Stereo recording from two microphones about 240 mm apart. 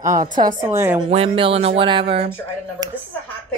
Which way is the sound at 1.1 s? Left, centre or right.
Right.